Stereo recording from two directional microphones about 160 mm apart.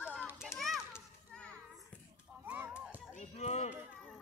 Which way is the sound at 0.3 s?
5° right (ahead or behind).